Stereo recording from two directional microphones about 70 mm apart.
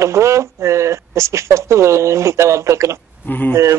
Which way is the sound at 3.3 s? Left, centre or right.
Left.